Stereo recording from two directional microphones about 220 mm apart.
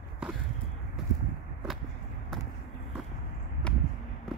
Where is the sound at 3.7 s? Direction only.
5° left (ahead or behind).